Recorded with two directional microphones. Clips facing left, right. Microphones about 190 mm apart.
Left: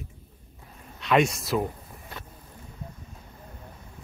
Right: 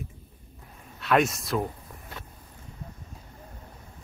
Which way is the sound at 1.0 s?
Centre (ahead or behind).